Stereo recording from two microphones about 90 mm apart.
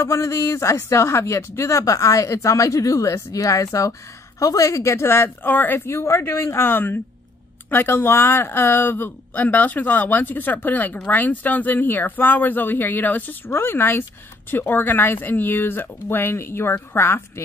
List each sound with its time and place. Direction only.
0.0 s speech: 30° left (ahead or behind)
5.9 s speech: 30° left (ahead or behind)